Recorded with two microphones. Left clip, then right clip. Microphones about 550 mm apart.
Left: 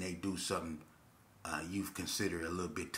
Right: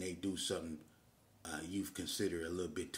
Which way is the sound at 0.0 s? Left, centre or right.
Right.